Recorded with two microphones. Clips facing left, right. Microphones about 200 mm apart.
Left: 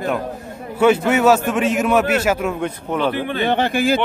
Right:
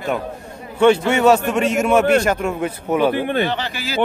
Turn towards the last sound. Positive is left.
turn(degrees=50)  # may be behind; listen again after turning